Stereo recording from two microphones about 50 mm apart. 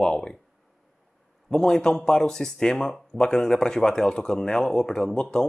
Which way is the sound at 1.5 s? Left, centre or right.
Centre.